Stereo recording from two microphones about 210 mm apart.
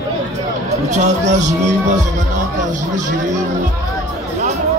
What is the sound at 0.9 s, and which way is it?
Speech, 35° right (ahead or behind).